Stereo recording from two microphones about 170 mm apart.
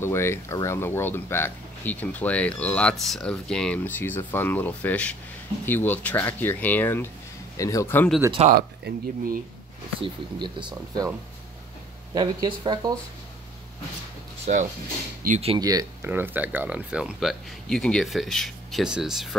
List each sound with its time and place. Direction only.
0.0 s speech: 15° left (ahead or behind)
8.5 s speech: 60° right (ahead or behind)
9.9 s speech: 30° right (ahead or behind)
12.1 s speech: 25° right (ahead or behind)
14.4 s speech: 45° right (ahead or behind)
15.6 s speech: 20° right (ahead or behind)
16.1 s speech: 10° right (ahead or behind)